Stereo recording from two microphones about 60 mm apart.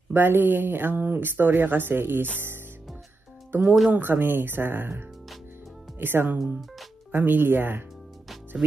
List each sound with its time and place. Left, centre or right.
0.1 s a woman's voice: right